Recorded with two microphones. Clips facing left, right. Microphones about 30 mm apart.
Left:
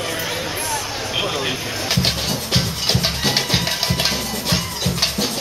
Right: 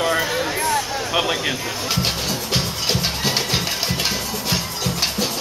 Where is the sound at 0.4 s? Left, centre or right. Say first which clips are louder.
Right 3 dB; centre.